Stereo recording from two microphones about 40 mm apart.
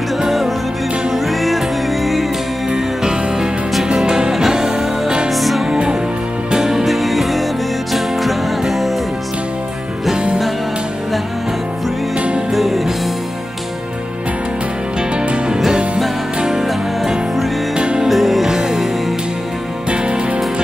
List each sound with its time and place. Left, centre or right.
0.2 s music: centre
2.7 s music: centre
5.3 s music: centre
5.7 s music: right
6.9 s music: centre
10.1 s music: right
12.4 s music: centre
15.0 s music: right
16.3 s music: centre
17.7 s music: right
18.0 s music: centre
19.9 s music: right